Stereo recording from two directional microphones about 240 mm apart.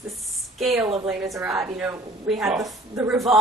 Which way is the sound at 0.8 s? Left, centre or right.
Centre.